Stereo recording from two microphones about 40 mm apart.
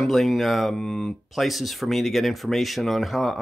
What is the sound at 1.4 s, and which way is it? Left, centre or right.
Speech, centre.